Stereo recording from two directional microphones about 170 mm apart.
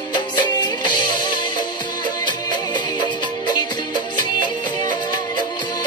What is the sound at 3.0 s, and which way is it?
Music, 25° left (ahead or behind).